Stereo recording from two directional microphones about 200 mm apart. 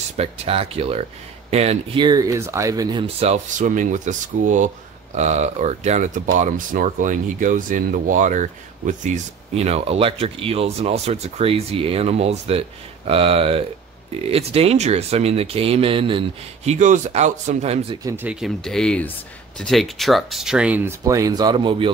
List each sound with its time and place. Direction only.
0.2 s speech: 30° right (ahead or behind)
18.0 s speech: 10° right (ahead or behind)